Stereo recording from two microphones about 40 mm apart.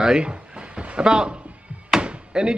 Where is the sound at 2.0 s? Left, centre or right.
Right.